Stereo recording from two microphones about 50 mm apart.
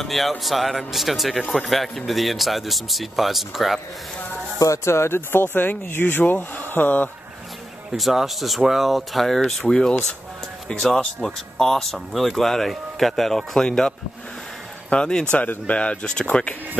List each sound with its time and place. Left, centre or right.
0.0 s speech: centre
4.6 s speech: left
7.9 s speech: centre